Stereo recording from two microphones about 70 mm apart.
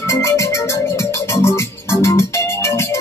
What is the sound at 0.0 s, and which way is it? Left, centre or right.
Music, left.